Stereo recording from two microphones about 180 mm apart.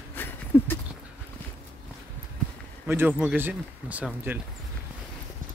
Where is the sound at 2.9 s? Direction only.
10° right (ahead or behind).